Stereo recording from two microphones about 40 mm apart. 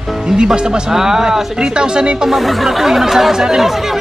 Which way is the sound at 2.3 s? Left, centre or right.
Centre.